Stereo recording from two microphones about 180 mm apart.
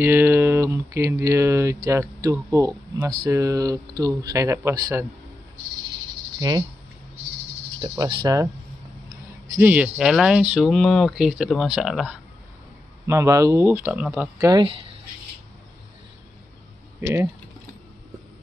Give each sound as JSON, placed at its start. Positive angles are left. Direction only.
{"t": 0.0, "sound": "speech", "side_deg": -15}
{"t": 8.0, "sound": "speech", "side_deg": -25}
{"t": 9.6, "sound": "speech", "side_deg": -5}
{"t": 13.0, "sound": "speech", "side_deg": -15}
{"t": 14.4, "sound": "speech", "side_deg": -25}
{"t": 17.0, "sound": "speech", "side_deg": -15}